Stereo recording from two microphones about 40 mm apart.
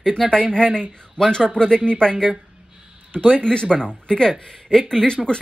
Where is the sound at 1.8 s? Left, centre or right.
Left.